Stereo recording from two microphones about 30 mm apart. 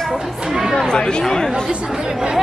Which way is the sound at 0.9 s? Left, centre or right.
Left.